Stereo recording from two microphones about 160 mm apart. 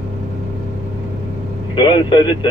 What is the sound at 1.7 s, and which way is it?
Vehicle, 30° left (ahead or behind).